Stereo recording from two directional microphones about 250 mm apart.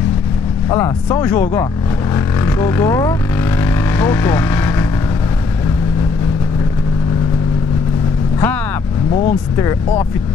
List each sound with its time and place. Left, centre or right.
0.7 s speech: centre
2.1 s vehicle: centre
9.1 s speech: left
9.6 s speech: centre